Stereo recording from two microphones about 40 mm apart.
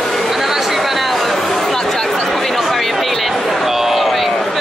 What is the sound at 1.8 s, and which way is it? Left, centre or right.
Chatter, centre.